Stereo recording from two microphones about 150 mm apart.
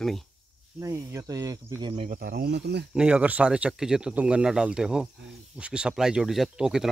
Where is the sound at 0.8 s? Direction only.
20° right (ahead or behind).